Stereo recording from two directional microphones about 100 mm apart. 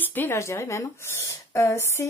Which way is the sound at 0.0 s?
20° left (ahead or behind).